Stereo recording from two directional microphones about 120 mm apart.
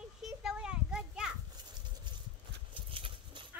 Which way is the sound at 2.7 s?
45° right (ahead or behind).